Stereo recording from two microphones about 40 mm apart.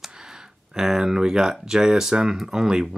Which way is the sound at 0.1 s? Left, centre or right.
Centre.